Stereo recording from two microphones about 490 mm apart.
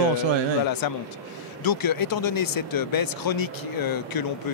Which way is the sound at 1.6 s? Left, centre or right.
Left.